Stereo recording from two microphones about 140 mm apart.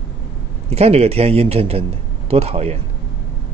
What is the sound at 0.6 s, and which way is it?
Speech, 45° right (ahead or behind).